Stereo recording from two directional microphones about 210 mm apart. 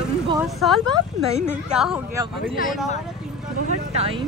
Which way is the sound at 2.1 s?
20° right (ahead or behind).